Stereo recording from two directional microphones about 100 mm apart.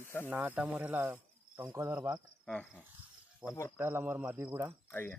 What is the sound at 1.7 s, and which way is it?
Speech, 30° right (ahead or behind).